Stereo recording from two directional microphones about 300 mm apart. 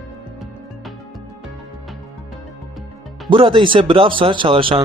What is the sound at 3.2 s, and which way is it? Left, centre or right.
Speech, centre.